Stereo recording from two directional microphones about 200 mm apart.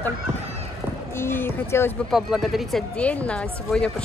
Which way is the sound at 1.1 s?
10° left (ahead or behind).